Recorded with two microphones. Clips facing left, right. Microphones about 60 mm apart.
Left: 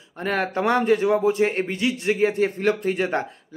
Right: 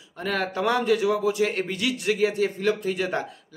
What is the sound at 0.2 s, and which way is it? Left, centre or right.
Speech, left.